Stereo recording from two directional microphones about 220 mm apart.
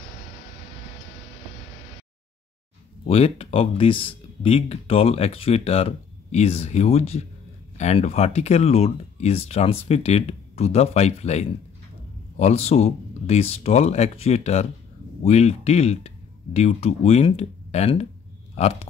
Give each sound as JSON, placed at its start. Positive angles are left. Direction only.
{"t": 3.1, "sound": "speech", "side_deg": 25}